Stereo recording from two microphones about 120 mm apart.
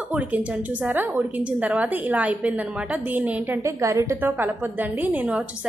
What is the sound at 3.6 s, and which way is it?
Speech, 25° right (ahead or behind).